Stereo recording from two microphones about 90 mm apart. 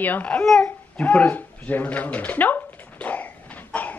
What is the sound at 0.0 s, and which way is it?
Speech, 15° left (ahead or behind).